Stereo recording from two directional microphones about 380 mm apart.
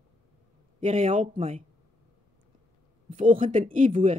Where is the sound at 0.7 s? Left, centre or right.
Centre.